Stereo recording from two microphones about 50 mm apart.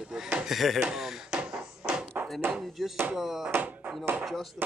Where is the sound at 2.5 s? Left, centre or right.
Centre.